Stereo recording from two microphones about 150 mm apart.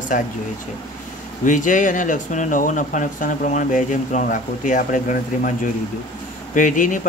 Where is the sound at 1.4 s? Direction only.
60° left (ahead or behind).